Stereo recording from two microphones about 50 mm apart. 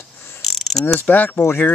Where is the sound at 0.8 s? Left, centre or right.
Left.